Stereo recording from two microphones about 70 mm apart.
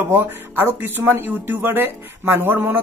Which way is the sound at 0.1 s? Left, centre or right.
Right.